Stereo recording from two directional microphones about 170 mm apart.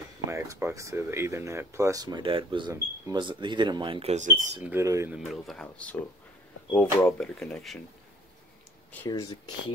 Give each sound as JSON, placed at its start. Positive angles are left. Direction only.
{"t": 0.3, "sound": "speech", "side_deg": -15}
{"t": 4.7, "sound": "speech", "side_deg": -15}
{"t": 5.1, "sound": "speech", "side_deg": 0}
{"t": 8.9, "sound": "speech", "side_deg": 20}